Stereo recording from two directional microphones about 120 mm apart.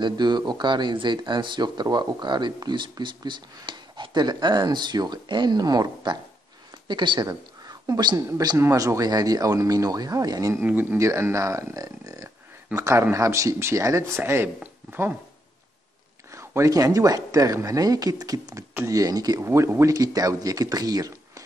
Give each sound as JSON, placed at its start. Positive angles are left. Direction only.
{"t": 0.0, "sound": "a woman's voice", "side_deg": -35}
{"t": 10.6, "sound": "speech", "side_deg": -15}
{"t": 16.3, "sound": "speech", "side_deg": -25}